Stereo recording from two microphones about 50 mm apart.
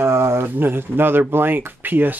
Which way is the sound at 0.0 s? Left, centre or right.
Right.